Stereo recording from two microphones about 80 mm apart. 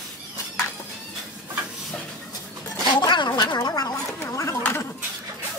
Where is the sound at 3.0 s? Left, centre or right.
Left.